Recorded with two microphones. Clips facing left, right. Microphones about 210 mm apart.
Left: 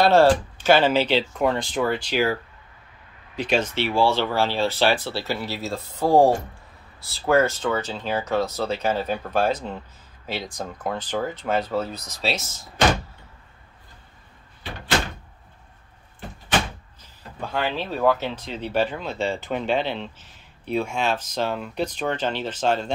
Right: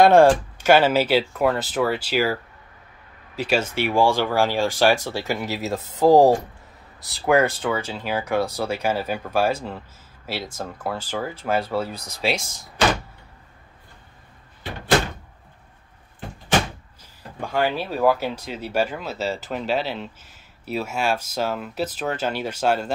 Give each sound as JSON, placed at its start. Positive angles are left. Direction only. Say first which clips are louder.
{"t": 0.0, "sound": "speech", "louder": "right 3 dB", "side_deg": -15}
{"t": 3.3, "sound": "speech", "louder": "even", "side_deg": -5}
{"t": 5.9, "sound": "speech", "louder": "right 3 dB", "side_deg": -40}
{"t": 7.1, "sound": "speech", "louder": "right 1 dB", "side_deg": -15}
{"t": 17.5, "sound": "speech", "louder": "right 3 dB", "side_deg": -10}